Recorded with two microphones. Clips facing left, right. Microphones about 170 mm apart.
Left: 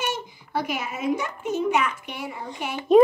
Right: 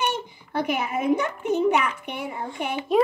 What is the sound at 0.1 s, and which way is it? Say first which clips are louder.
A child's voice: even; 60° right (ahead or behind).